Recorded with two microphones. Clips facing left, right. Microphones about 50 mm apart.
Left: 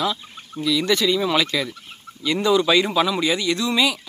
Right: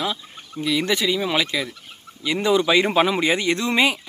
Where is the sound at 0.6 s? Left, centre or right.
Right.